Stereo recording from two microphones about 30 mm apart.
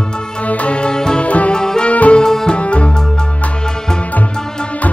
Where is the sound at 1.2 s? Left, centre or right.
Left.